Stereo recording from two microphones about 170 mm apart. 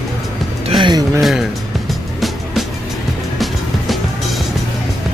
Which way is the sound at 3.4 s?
Centre (ahead or behind).